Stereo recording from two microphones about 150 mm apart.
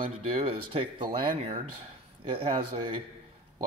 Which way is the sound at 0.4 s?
35° right (ahead or behind).